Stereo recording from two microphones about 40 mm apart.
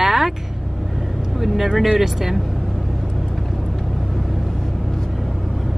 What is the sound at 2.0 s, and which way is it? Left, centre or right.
Speech, centre.